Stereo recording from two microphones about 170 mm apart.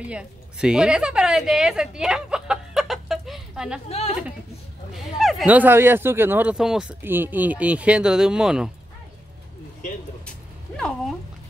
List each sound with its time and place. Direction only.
0.1 s a woman's voice: 5° right (ahead or behind)
3.9 s a woman's voice: 35° left (ahead or behind)
4.9 s speech: centre (ahead or behind)